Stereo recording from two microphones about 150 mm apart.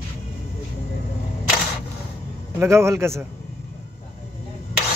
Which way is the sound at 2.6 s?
20° right (ahead or behind).